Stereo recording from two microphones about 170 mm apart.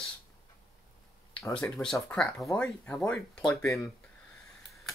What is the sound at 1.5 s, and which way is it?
Speech, 5° left (ahead or behind).